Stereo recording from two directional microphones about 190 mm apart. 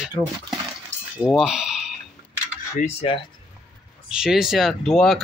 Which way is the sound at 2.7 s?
30° left (ahead or behind).